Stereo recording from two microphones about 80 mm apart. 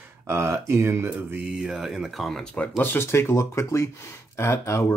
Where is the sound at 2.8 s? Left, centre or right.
Left.